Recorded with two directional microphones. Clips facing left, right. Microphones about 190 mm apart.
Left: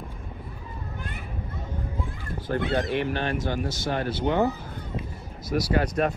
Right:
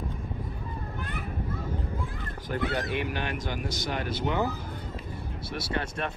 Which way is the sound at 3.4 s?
45° left (ahead or behind).